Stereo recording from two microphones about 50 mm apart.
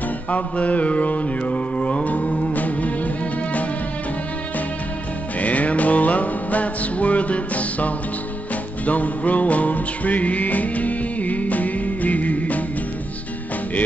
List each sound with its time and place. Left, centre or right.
0.3 s mantra: left
5.4 s music: left